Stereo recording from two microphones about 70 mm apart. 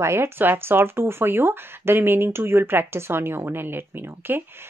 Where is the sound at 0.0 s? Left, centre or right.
Right.